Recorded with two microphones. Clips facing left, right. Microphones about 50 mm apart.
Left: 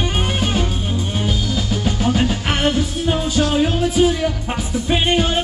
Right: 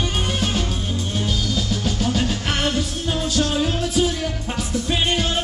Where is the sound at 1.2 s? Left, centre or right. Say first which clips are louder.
Left 2 dB; centre.